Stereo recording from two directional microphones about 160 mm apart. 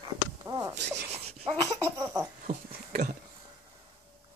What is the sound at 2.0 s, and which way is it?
Laughter, 15° right (ahead or behind).